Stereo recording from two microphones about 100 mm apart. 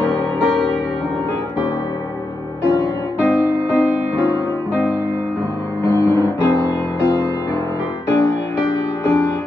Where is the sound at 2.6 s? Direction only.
25° left (ahead or behind).